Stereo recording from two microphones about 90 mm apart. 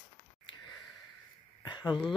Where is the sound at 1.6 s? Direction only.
55° left (ahead or behind).